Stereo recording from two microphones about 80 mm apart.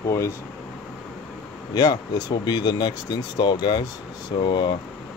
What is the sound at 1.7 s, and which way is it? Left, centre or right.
Speech, left.